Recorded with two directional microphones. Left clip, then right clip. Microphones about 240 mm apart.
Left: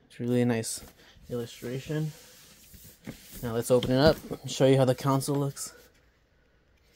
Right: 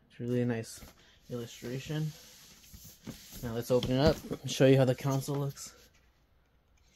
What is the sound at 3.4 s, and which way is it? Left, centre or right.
Speech, left.